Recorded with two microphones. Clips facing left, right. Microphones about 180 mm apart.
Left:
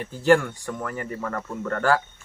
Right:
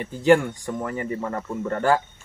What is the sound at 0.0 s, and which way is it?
Speech, 15° right (ahead or behind).